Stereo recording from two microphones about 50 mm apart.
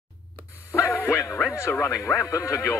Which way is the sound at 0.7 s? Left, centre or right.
Left.